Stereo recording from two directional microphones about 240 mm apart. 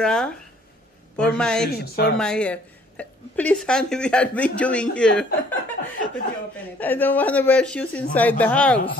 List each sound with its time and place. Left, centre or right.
0.0 s speech: centre
1.7 s speech: left
2.1 s speech: centre